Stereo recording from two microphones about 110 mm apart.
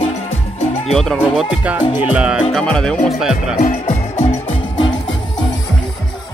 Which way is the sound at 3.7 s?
75° left (ahead or behind).